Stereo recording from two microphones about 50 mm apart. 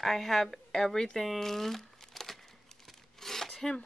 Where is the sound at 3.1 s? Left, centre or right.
Centre.